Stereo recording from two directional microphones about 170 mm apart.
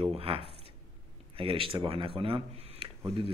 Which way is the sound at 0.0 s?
35° right (ahead or behind).